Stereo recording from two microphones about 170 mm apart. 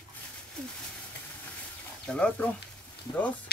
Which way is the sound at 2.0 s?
5° left (ahead or behind).